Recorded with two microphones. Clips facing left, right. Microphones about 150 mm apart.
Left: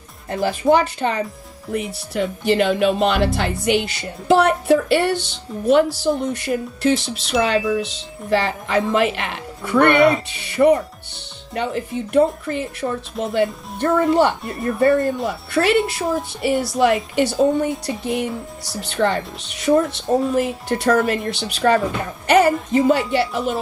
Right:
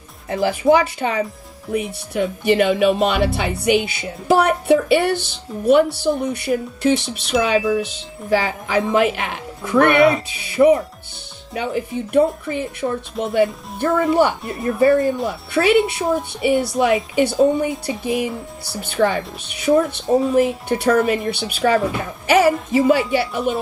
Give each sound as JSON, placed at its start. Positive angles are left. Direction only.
{"t": 0.3, "sound": "speech", "side_deg": -5}